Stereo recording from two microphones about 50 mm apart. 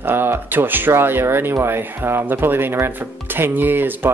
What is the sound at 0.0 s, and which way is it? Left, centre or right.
Speech, right.